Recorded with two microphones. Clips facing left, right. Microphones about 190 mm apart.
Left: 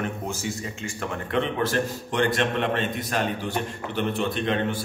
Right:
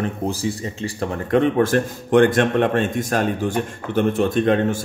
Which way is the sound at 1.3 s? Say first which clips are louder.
Right 8 dB; 45° right (ahead or behind).